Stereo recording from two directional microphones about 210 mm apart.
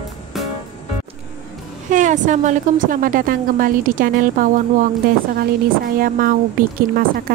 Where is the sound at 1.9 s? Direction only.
35° right (ahead or behind).